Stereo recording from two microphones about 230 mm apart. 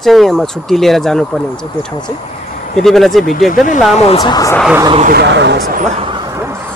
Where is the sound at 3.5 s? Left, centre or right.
Left.